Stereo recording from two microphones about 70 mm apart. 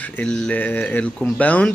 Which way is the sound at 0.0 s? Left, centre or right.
Left.